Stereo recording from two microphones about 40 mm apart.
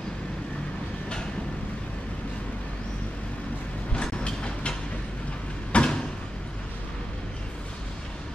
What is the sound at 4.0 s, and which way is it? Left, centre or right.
Train, left.